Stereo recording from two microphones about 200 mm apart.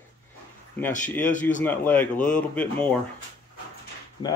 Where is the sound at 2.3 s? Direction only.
5° left (ahead or behind).